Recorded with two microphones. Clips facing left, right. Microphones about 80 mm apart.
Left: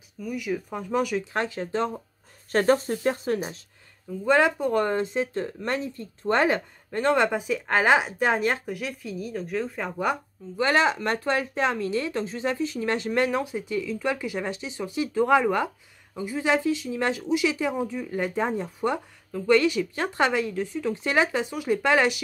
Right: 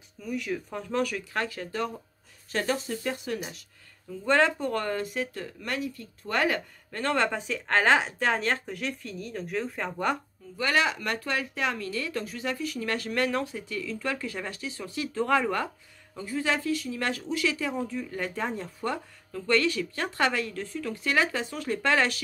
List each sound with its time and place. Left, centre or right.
0.2 s speech: centre; by 2.0 s left
2.5 s speech: left
4.2 s speech: centre
10.6 s speech: left